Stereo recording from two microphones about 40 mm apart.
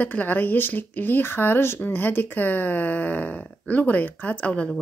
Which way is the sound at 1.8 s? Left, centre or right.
Left.